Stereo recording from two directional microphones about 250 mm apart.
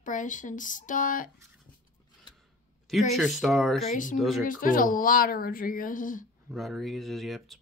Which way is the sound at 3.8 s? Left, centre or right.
Left.